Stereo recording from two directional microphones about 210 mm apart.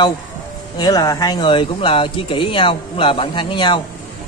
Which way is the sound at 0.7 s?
20° left (ahead or behind).